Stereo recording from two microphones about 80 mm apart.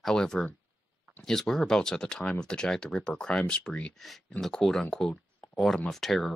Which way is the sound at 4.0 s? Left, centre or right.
Centre.